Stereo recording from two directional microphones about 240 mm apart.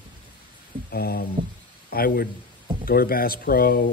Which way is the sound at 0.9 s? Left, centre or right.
Left.